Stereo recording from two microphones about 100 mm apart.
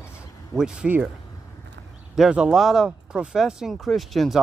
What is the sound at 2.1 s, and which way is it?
Speech, 5° right (ahead or behind).